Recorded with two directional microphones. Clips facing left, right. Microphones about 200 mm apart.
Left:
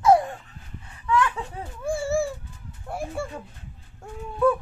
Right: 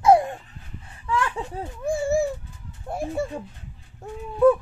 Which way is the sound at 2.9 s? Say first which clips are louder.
Right 4 dB; 20° right (ahead or behind).